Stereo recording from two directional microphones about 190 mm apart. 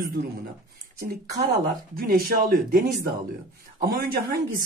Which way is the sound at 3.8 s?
50° right (ahead or behind).